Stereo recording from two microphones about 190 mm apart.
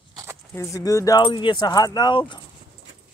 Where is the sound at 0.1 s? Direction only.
15° right (ahead or behind).